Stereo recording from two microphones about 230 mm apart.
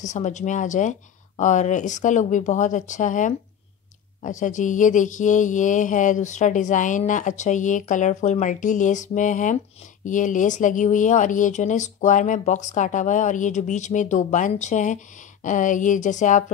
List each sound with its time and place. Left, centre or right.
0.0 s speech: left